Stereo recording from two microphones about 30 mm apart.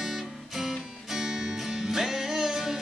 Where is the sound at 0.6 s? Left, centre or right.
Centre.